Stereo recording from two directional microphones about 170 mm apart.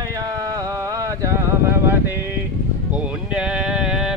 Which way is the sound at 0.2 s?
20° right (ahead or behind).